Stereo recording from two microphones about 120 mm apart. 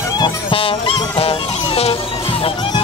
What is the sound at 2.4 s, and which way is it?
Music, 45° left (ahead or behind).